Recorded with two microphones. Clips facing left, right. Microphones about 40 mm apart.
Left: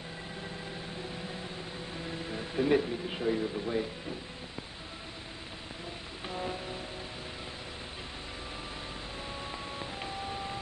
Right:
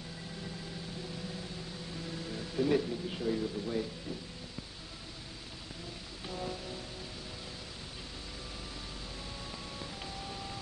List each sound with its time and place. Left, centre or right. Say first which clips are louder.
2.0 s speech: left 3 dB; left
6.2 s music: left 3 dB; left
9.5 s music: left 4 dB; left